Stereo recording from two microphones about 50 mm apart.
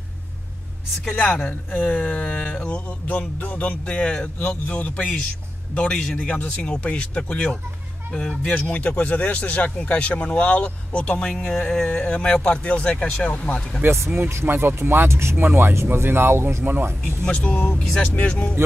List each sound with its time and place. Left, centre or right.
1.1 s speech: left
3.1 s a man's voice: left
5.8 s music: centre
6.2 s speech: left
11.4 s music: centre
12.1 s speech: left
13.8 s speech: right
14.3 s speech: right
15.3 s speech: right
17.2 s music: centre
18.0 s speech: left